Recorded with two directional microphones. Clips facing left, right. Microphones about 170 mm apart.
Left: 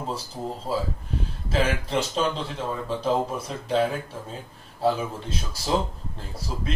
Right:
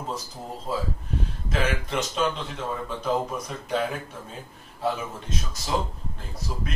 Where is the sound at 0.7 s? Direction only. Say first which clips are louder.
Right 1 dB; 35° left (ahead or behind).